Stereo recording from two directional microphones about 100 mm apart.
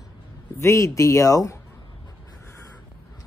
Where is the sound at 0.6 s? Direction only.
30° left (ahead or behind).